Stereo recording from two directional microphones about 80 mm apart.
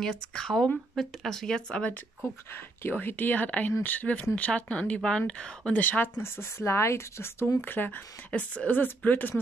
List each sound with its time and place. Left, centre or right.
0.0 s speech: centre
2.5 s a woman's voice: left